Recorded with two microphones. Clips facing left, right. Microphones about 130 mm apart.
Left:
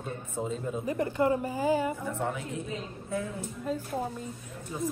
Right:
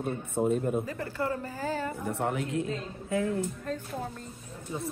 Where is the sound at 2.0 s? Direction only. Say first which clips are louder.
Right 2 dB; 65° right (ahead or behind).